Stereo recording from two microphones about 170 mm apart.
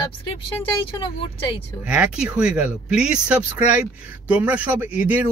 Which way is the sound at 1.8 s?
5° right (ahead or behind).